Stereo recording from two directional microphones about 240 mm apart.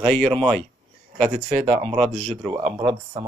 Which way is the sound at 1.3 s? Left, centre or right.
Right.